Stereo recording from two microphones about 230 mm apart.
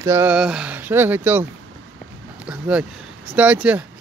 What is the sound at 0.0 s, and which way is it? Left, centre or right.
Speech, centre.